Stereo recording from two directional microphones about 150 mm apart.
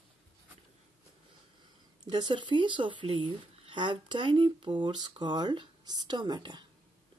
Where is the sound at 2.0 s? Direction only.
30° right (ahead or behind).